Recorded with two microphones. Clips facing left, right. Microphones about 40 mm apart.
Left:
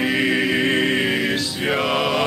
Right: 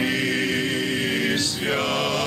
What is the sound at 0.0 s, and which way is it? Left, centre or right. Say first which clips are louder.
Choir: left 4 dB; centre.